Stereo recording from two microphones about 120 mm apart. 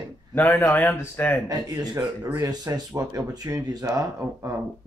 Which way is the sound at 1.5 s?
30° right (ahead or behind).